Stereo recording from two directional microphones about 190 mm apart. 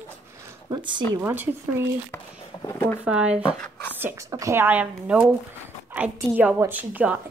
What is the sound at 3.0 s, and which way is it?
Speech, 5° right (ahead or behind).